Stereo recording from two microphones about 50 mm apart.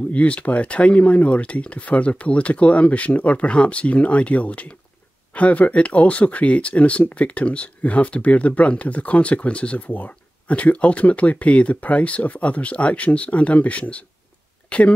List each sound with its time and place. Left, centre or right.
0.1 s speech: left